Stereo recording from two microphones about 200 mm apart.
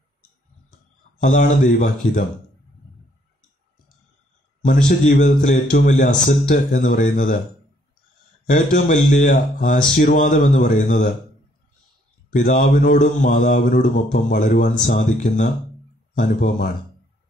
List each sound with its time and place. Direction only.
1.2 s speech: 45° left (ahead or behind)
4.8 s speech: 45° left (ahead or behind)
8.5 s speech: 45° left (ahead or behind)
12.3 s speech: 45° left (ahead or behind)